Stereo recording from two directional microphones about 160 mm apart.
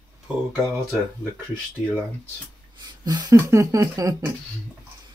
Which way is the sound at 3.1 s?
25° right (ahead or behind).